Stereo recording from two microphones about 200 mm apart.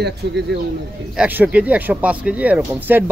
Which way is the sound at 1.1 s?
10° right (ahead or behind).